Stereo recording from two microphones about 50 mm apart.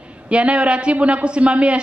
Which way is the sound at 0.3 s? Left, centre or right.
Right.